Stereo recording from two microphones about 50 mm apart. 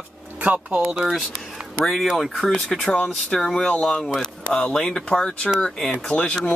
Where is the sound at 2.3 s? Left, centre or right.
Centre.